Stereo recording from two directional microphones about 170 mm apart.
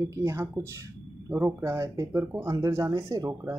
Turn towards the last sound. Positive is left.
turn(degrees=-20)  # may be behind; listen again after turning